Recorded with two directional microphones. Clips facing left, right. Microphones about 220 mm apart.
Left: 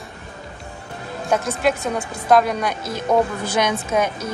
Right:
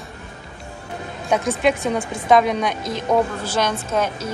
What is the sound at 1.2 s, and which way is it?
Speech, centre (ahead or behind).